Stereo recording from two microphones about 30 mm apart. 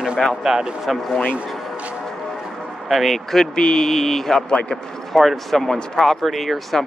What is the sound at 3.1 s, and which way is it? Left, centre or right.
Speech, centre.